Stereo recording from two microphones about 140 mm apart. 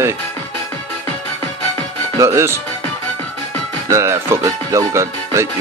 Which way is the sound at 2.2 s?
20° right (ahead or behind).